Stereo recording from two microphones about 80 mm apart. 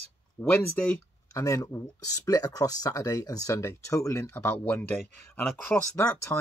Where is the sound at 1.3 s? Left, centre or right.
Left.